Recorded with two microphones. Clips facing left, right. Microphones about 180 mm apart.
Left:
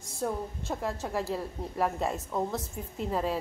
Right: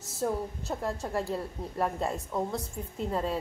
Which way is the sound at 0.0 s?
5° right (ahead or behind).